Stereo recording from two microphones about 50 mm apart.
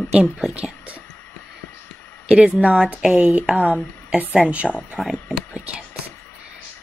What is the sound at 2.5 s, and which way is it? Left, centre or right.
Speech, centre.